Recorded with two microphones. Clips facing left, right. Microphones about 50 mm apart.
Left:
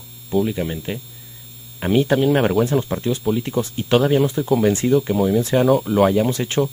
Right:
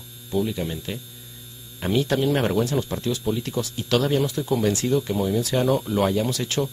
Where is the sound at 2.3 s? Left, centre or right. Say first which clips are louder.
Left 5 dB; centre.